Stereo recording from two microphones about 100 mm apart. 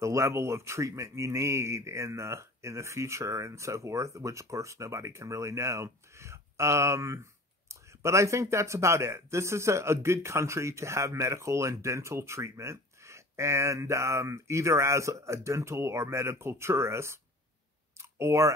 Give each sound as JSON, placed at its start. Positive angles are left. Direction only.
{"t": 0.0, "sound": "speech", "side_deg": -30}